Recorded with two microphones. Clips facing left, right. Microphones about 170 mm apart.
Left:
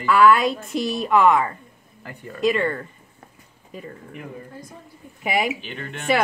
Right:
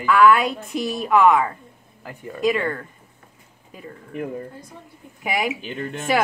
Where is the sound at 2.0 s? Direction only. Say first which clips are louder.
Even; 15° right (ahead or behind).